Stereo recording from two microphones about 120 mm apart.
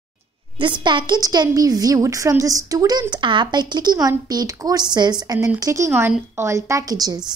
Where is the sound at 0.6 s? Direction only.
40° right (ahead or behind).